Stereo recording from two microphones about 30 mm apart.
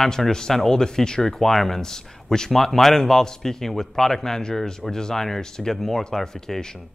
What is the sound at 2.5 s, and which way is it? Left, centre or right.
Speech, centre.